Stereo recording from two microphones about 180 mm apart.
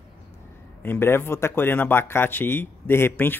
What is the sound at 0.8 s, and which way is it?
Speech, 10° left (ahead or behind).